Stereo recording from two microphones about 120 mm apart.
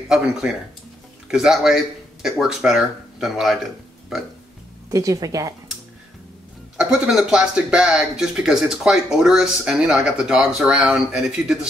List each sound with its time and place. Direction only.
0.1 s speech: 5° right (ahead or behind)
4.9 s a woman's voice: 30° right (ahead or behind)
6.8 s speech: 5° right (ahead or behind)